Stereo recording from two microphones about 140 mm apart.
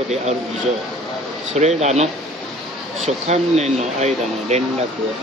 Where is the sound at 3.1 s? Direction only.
50° right (ahead or behind).